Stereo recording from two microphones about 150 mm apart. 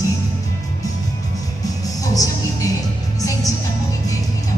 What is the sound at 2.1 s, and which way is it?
Music, 25° left (ahead or behind).